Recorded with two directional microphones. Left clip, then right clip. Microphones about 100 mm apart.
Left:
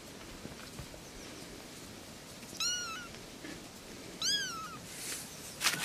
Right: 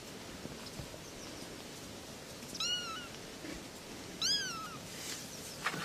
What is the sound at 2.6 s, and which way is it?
Cat, 15° left (ahead or behind).